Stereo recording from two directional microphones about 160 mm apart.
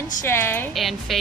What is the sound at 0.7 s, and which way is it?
Speech, centre (ahead or behind).